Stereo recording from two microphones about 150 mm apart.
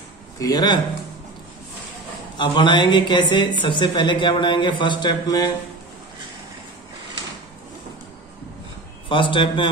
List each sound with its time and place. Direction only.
0.4 s speech: 25° left (ahead or behind)
2.3 s speech: 35° left (ahead or behind)
9.1 s speech: 35° left (ahead or behind)